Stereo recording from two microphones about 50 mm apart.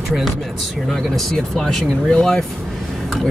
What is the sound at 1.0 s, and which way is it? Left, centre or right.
Speech, centre.